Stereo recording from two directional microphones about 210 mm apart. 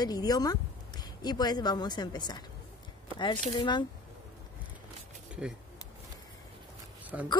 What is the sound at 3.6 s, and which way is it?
Speech, 20° left (ahead or behind).